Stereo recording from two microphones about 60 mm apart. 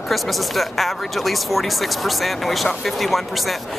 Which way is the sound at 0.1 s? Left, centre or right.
Centre.